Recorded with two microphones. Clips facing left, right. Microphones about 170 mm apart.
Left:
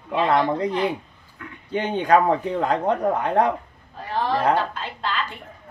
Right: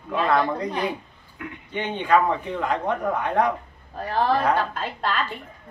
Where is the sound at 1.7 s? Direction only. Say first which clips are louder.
Left 2 dB; 40° left (ahead or behind).